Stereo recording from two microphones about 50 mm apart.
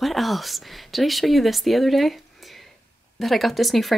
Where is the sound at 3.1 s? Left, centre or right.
Centre.